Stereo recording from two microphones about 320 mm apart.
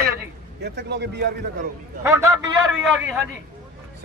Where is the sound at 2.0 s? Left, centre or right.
Centre.